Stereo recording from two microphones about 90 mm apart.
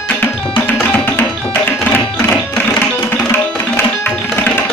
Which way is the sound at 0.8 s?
20° left (ahead or behind).